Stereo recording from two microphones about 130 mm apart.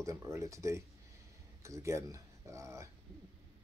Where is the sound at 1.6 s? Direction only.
20° right (ahead or behind).